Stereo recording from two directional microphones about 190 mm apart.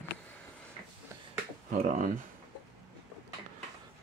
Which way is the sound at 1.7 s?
40° right (ahead or behind).